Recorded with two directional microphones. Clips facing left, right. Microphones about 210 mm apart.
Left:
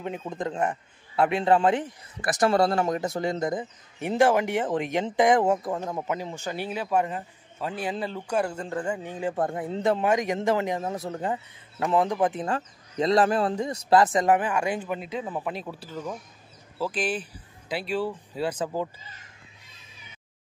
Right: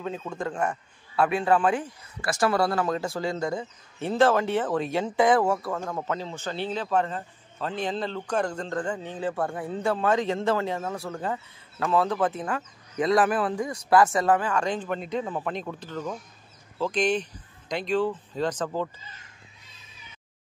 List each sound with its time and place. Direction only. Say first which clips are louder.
0.0 s a man's voice: even; 20° left (ahead or behind)
12.4 s a man's voice: left 2 dB; 30° left (ahead or behind); by 18.9 s 10° left (ahead or behind)